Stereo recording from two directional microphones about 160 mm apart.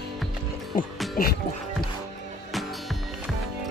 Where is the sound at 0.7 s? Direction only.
60° left (ahead or behind).